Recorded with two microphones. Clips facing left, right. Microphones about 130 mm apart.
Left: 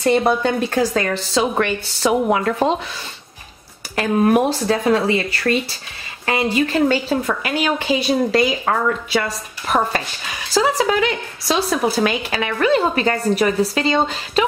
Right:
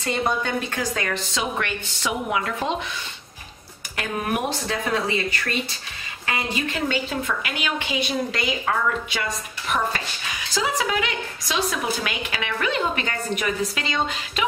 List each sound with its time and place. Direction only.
0.0 s speech: 35° left (ahead or behind)
3.9 s speech: 35° left (ahead or behind)